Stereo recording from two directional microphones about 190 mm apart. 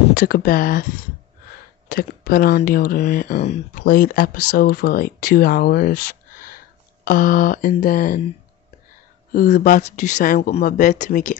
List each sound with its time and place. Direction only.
0.1 s speech: 50° left (ahead or behind)
1.9 s speech: 50° left (ahead or behind)
9.3 s speech: 45° left (ahead or behind)